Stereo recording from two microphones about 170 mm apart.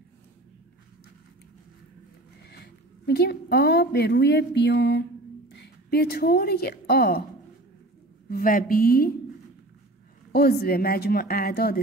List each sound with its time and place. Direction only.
2.5 s a woman's voice: 70° left (ahead or behind); by 5.0 s 90° left
5.5 s a woman's voice: 80° left
8.3 s a woman's voice: 55° left (ahead or behind)
10.3 s a woman's voice: 65° left (ahead or behind)